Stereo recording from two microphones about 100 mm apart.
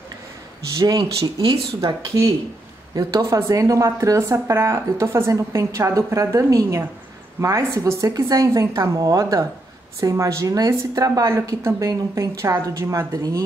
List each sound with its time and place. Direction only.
0.7 s a woman's voice: 40° right (ahead or behind)